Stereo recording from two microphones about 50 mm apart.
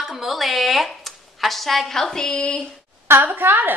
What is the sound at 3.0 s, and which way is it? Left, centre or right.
Speech, right.